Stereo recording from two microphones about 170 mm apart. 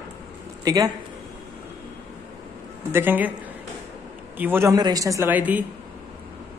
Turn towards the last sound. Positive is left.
turn(degrees=-10)  # may be behind; listen again after turning